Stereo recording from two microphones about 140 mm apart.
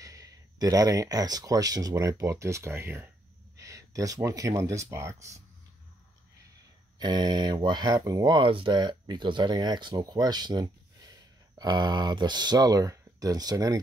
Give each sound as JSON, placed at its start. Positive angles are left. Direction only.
{"t": 0.0, "sound": "speech", "side_deg": -25}
{"t": 7.0, "sound": "speech", "side_deg": -30}